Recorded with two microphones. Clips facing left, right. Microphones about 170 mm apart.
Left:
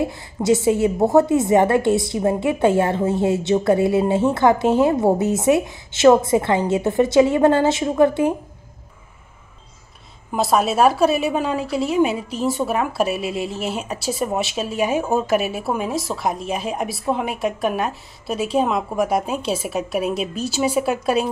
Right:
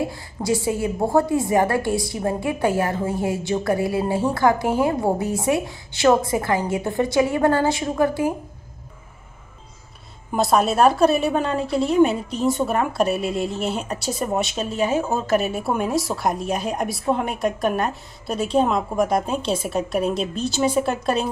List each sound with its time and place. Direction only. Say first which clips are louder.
0.0 s a woman's voice: left 4 dB; 25° left (ahead or behind)
10.3 s a woman's voice: even; centre (ahead or behind)